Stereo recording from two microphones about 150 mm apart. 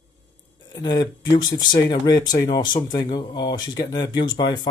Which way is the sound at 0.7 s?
30° left (ahead or behind).